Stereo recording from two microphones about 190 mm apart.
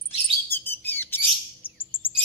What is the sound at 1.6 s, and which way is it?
Chirp, 10° left (ahead or behind).